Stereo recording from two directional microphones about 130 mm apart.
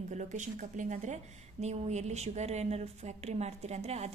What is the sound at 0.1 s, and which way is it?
A woman's voice, 70° right (ahead or behind).